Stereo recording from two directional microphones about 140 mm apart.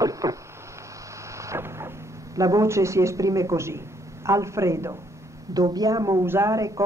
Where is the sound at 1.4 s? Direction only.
20° right (ahead or behind).